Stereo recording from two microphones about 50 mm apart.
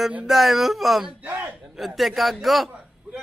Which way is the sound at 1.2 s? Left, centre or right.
Right.